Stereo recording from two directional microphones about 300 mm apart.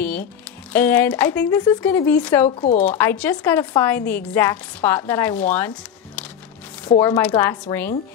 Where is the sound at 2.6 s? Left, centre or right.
Left.